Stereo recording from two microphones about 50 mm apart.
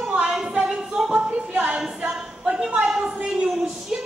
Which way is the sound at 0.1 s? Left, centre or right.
Centre.